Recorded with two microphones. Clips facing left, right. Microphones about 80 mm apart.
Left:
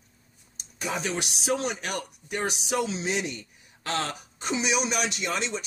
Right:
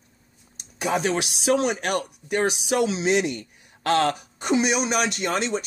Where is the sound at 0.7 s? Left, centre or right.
Right.